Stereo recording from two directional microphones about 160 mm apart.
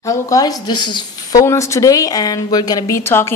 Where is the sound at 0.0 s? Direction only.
20° left (ahead or behind).